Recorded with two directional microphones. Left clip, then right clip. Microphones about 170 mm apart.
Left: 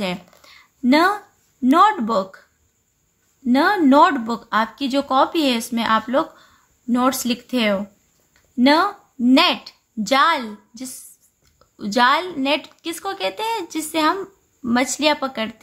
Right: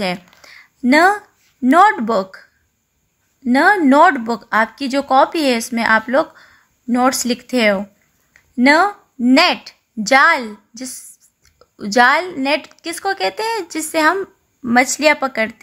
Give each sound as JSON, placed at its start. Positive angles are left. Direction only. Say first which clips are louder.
{"t": 0.0, "sound": "a woman's voice", "louder": "right 5 dB", "side_deg": -30}
{"t": 3.4, "sound": "a woman's voice", "louder": "right 4 dB", "side_deg": -25}